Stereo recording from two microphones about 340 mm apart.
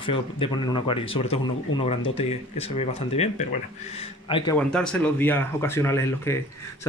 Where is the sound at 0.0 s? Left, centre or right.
Centre.